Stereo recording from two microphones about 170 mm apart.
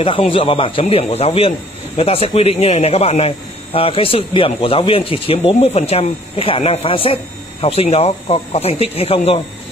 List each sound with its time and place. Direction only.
0.0 s speech: 30° left (ahead or behind)